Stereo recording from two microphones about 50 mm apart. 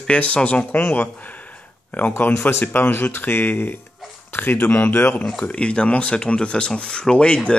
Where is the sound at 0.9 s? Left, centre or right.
Left.